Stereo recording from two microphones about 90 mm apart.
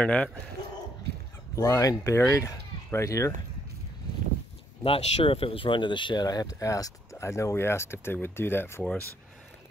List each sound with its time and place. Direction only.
0.0 s speech: 15° left (ahead or behind)
1.5 s speech: 35° left (ahead or behind)
4.8 s speech: 85° left; by 6.2 s 60° left (ahead or behind)
6.2 s speech: 45° left (ahead or behind); by 8.8 s 25° left (ahead or behind)